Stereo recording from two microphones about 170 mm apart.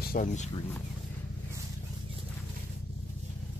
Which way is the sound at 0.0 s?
55° left (ahead or behind).